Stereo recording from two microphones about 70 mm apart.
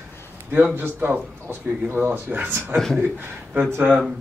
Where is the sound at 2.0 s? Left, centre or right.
Right.